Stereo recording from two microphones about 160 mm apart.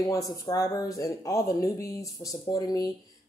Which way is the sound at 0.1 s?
20° left (ahead or behind).